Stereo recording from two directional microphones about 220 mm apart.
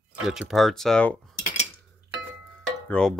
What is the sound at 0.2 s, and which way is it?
Speech, centre (ahead or behind).